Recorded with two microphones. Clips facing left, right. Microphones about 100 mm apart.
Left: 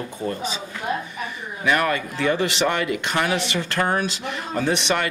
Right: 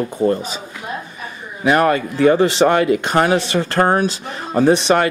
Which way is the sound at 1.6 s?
40° right (ahead or behind).